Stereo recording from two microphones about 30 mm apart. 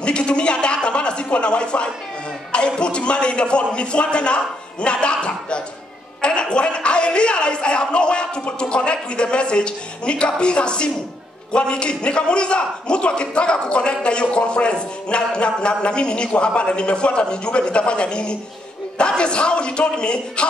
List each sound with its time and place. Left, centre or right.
0.0 s a man's voice: left
6.2 s a sound: left
8.5 s a man's voice: left